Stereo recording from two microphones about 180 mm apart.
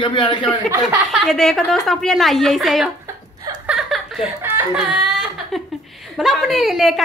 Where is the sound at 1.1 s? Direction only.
Centre (ahead or behind).